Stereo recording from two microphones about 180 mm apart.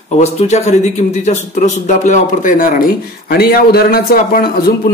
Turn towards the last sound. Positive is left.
turn(degrees=50)  # may be behind; listen again after turning